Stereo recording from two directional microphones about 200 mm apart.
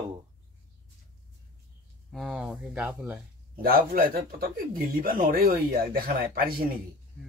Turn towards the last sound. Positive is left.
turn(degrees=-45)  # may be behind; listen again after turning